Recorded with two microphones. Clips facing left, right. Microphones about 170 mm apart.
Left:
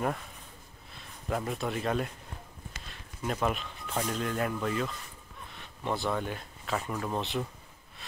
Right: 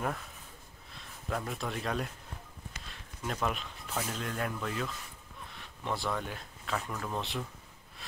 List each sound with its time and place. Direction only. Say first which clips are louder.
0.9 s speech: left 3 dB; centre (ahead or behind)
2.9 s a sound: left 4 dB; 5° left (ahead or behind)
4.2 s speech: left 5 dB; 5° left (ahead or behind)
5.5 s a sound: left 3 dB; centre (ahead or behind)
6.9 s speech: left 4 dB; 15° left (ahead or behind)
7.2 s speech: left 4 dB; centre (ahead or behind)